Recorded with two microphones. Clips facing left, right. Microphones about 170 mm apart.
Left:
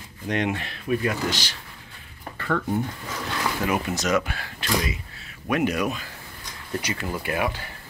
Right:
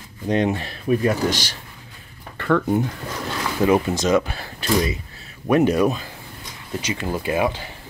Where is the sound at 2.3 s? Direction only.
70° right (ahead or behind).